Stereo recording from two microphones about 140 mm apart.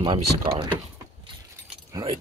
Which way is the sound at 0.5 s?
35° right (ahead or behind).